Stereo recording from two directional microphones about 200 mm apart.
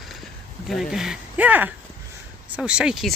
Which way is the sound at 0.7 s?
Centre (ahead or behind).